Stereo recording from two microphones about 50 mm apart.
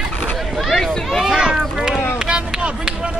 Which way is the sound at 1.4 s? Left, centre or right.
Centre.